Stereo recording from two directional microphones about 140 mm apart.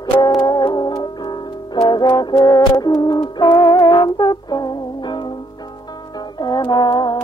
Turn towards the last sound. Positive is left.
turn(degrees=30)  # may be behind; listen again after turning